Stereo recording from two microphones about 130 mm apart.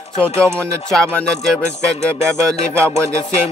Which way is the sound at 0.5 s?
5° left (ahead or behind).